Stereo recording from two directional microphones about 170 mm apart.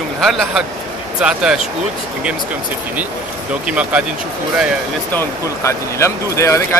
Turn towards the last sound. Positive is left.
turn(degrees=15)  # may be behind; listen again after turning